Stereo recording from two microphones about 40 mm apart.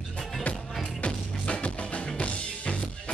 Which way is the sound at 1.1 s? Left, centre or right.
Left.